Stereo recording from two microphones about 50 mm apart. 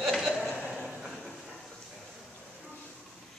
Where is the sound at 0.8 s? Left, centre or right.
Centre.